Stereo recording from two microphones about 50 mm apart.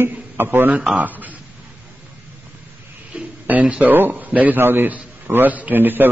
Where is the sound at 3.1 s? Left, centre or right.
Right.